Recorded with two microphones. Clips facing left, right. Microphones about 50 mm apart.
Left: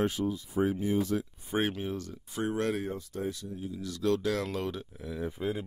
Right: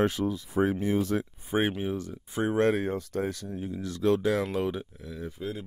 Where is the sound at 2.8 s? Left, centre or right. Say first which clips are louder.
Right 5 dB; right.